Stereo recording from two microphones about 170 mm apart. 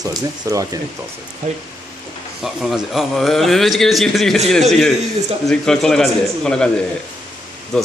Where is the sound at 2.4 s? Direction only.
Centre (ahead or behind).